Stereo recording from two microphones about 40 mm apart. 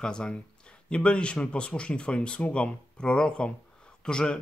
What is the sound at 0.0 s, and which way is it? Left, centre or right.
Speech, left.